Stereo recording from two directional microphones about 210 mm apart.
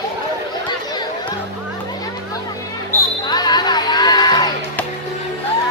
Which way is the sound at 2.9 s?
10° left (ahead or behind).